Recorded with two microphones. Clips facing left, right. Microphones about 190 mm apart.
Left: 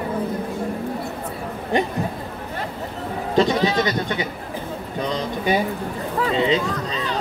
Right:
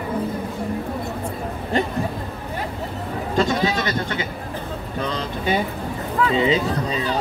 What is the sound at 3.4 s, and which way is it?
Speech, 20° left (ahead or behind).